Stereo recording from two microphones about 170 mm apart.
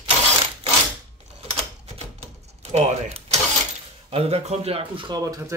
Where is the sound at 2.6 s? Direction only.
40° right (ahead or behind).